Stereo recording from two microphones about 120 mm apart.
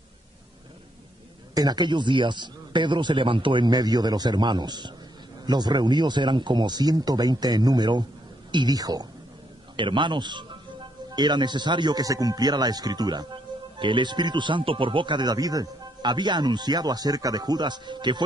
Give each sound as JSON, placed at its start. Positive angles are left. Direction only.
{"t": 1.5, "sound": "a man's voice", "side_deg": -35}